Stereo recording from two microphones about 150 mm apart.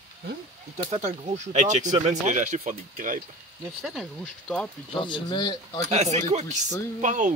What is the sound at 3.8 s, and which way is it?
Speech, centre (ahead or behind).